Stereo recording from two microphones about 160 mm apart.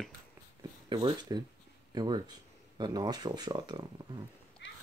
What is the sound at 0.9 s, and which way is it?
Speech, 30° right (ahead or behind).